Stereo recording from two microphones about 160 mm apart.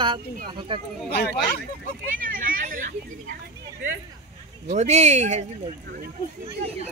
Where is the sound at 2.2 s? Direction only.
60° right (ahead or behind).